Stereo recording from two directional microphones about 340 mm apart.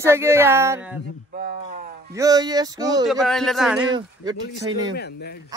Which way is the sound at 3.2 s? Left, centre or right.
Centre.